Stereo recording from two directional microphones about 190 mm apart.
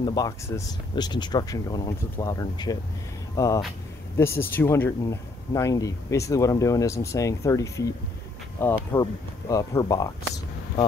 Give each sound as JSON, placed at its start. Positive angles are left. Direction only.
{"t": 0.0, "sound": "speech", "side_deg": 20}